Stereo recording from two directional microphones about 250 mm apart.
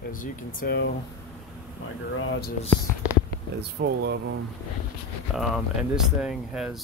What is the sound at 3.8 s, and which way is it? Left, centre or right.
Speech, right.